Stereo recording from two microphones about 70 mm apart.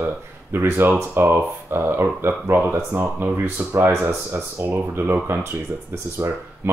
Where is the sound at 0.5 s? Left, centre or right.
Right.